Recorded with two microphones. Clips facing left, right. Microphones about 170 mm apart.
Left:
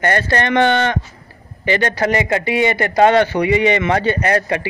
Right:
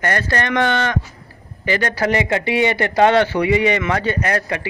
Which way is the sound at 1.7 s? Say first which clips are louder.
Left 2 dB; 5° right (ahead or behind).